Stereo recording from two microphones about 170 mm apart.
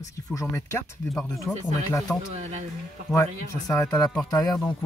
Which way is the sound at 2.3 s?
40° right (ahead or behind).